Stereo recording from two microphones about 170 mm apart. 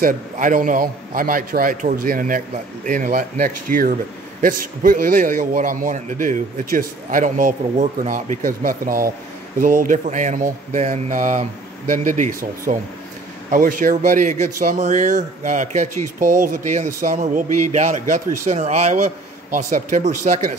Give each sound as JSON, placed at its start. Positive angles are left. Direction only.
{"t": 0.0, "sound": "a man's voice", "side_deg": -55}